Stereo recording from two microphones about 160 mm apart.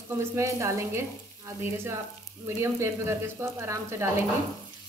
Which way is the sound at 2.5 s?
15° right (ahead or behind).